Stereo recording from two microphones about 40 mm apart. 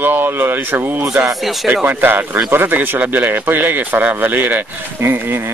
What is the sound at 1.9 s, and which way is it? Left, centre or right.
Speech, right.